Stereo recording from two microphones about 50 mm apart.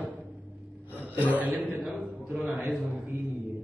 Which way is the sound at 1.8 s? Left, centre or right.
Centre.